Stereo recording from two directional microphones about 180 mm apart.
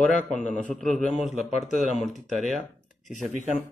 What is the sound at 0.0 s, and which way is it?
A man's voice, 5° left (ahead or behind).